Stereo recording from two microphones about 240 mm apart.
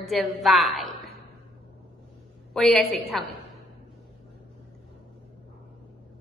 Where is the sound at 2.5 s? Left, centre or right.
Centre.